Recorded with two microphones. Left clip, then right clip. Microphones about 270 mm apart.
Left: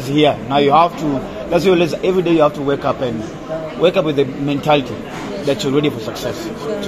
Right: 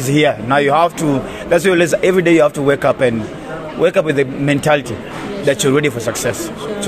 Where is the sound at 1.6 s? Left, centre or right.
Right.